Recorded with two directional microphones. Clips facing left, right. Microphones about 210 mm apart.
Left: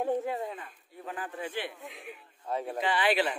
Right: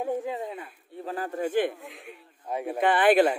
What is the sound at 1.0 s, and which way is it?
Speech, 40° right (ahead or behind).